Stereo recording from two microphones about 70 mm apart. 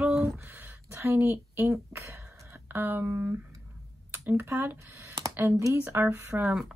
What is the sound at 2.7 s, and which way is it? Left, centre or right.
Speech, right.